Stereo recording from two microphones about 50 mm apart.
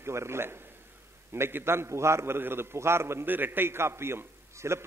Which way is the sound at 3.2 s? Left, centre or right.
Right.